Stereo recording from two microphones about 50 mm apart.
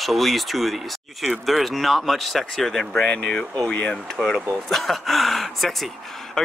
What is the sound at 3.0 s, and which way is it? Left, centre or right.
Speech, left.